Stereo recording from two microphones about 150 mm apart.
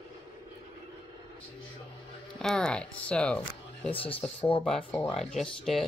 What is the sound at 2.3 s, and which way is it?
Speech, 5° left (ahead or behind).